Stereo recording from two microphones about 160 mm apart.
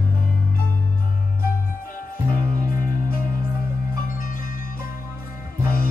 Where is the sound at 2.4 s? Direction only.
65° left (ahead or behind).